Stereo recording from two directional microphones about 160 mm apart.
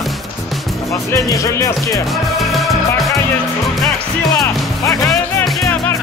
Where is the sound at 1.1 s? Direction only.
20° left (ahead or behind).